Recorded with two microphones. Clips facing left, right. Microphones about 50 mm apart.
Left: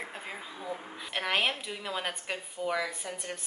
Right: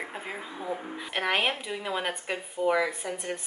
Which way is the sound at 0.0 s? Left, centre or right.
Centre.